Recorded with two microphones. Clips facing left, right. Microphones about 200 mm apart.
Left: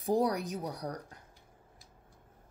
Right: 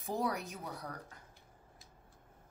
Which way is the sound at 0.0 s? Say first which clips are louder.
Left 7 dB; 35° left (ahead or behind).